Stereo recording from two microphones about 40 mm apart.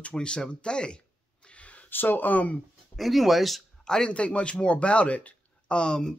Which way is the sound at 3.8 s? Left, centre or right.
Centre.